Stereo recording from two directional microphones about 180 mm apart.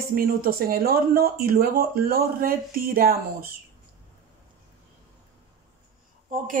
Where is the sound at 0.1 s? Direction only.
55° right (ahead or behind).